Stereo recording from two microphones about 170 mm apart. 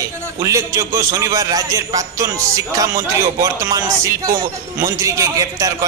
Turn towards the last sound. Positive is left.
turn(degrees=-20)  # may be behind; listen again after turning